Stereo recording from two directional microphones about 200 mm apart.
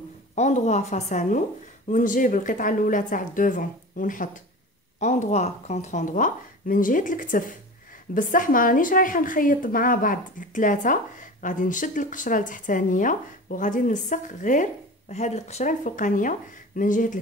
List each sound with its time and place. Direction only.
0.4 s a woman's voice: 35° left (ahead or behind)